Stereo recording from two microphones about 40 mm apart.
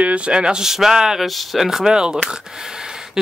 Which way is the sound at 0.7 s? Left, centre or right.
Centre.